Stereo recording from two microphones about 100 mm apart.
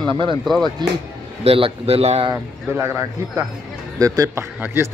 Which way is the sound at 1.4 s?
75° right (ahead or behind).